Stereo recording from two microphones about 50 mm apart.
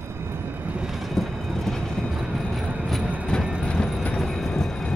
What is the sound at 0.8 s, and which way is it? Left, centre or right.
Train, centre.